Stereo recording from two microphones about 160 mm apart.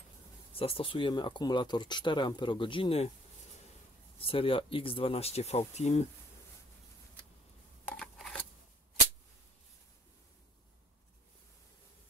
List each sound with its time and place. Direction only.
0.5 s speech: 35° left (ahead or behind)
4.2 s speech: 35° left (ahead or behind)
7.9 s a sound: 5° left (ahead or behind)